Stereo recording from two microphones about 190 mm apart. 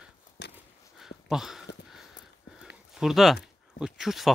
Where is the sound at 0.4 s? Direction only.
60° left (ahead or behind).